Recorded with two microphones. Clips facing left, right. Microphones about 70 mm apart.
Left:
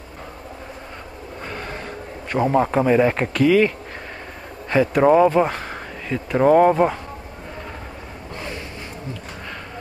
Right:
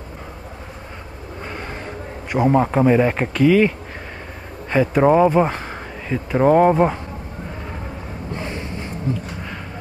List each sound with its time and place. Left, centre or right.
1.5 s gasp: centre
2.3 s speech: centre
8.4 s a sound: right